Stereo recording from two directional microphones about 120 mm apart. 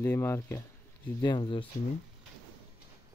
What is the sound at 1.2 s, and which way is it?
Speech, 35° left (ahead or behind).